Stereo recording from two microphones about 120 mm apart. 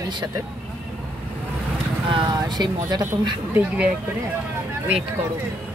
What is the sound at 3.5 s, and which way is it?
Speech, 15° right (ahead or behind).